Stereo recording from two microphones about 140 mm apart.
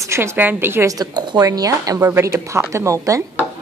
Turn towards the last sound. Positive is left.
turn(degrees=-20)  # may be behind; listen again after turning